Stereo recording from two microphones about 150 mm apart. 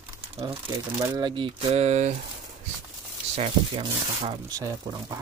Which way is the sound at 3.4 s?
35° right (ahead or behind).